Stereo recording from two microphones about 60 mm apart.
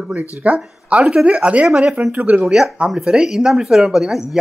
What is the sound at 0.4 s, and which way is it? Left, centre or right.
Speech, right.